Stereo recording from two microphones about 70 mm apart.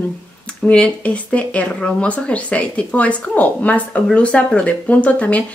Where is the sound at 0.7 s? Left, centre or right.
Centre.